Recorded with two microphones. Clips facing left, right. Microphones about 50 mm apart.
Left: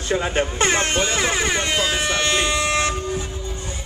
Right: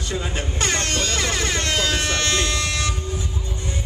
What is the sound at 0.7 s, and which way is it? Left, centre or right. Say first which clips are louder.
Speech: left 4 dB; left.